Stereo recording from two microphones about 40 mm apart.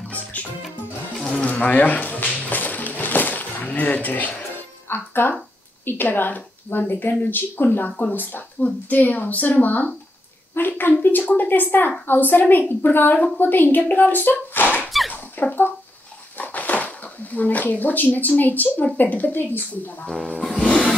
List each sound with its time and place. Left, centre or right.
0.1 s music: left
1.4 s a sound: left
4.8 s speech: left
10.8 s speech: left
15.4 s speech: left
16.3 s speech: left
20.4 s music: centre